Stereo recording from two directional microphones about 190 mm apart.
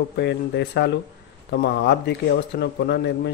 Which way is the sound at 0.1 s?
65° left (ahead or behind).